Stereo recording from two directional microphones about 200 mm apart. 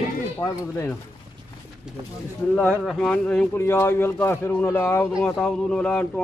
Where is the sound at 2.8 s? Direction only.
5° left (ahead or behind).